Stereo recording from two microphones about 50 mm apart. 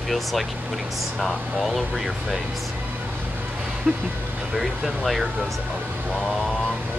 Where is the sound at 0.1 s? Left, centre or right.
Centre.